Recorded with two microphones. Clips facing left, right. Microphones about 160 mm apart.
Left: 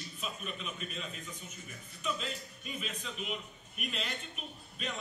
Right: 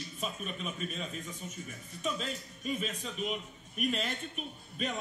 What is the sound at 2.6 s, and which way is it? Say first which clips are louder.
A man's voice: right 9 dB; 40° right (ahead or behind).